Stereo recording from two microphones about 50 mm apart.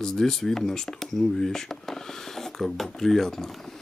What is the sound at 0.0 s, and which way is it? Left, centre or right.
Speech, centre.